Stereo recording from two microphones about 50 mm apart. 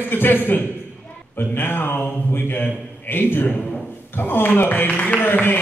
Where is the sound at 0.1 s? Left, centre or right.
Left.